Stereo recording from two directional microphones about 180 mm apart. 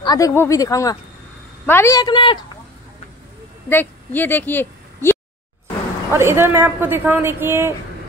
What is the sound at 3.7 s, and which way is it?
A woman's voice, 10° left (ahead or behind).